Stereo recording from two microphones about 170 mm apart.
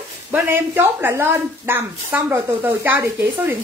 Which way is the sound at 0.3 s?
15° right (ahead or behind).